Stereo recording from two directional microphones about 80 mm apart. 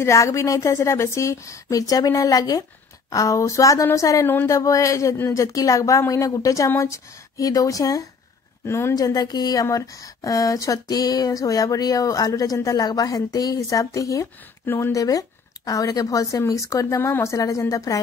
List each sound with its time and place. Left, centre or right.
0.0 s a woman's voice: left
8.6 s a woman's voice: left
8.9 s speech: left